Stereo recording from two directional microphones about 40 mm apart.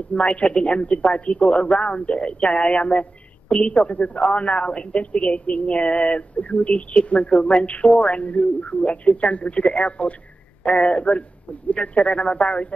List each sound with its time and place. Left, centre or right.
0.1 s speech: left